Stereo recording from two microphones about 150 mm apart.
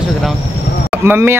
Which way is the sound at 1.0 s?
15° right (ahead or behind).